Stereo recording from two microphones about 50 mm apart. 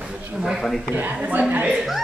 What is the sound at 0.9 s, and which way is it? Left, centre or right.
Speech, right.